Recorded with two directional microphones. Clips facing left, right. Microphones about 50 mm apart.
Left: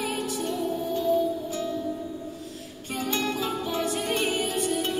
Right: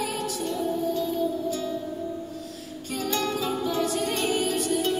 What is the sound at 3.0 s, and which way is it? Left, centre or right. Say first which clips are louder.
Music: even; left.